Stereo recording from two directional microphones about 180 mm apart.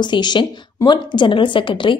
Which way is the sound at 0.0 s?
25° left (ahead or behind).